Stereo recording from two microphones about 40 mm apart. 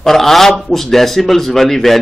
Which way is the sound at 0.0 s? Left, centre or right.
Centre.